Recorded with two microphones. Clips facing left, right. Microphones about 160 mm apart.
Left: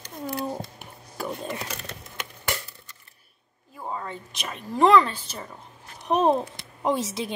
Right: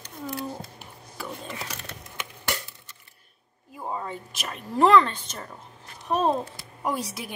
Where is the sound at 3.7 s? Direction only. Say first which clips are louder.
Right 1 dB; 15° right (ahead or behind); by 5.6 s 5° left (ahead or behind).